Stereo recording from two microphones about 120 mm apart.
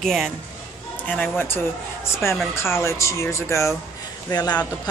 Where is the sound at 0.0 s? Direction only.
Centre (ahead or behind).